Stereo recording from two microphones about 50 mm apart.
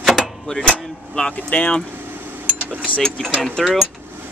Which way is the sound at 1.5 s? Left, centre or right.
Left.